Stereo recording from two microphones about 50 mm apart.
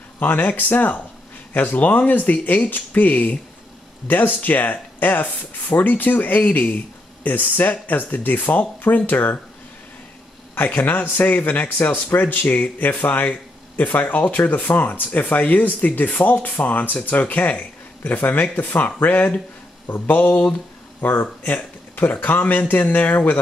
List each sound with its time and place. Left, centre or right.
0.2 s speech: left
10.5 s speech: left